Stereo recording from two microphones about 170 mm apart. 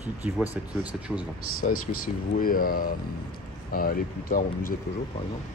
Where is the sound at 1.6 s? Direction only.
50° left (ahead or behind).